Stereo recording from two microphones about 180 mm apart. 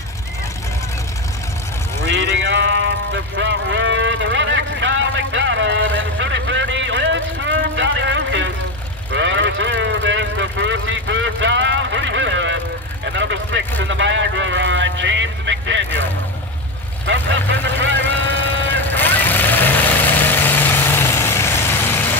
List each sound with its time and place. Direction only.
2.0 s vehicle: 80° right
13.0 s vehicle: 80° right
18.0 s vehicle: 10° left (ahead or behind)